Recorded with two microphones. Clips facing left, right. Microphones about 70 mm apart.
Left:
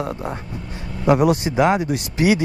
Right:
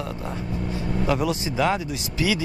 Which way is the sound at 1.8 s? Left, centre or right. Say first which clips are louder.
Left 6 dB; left.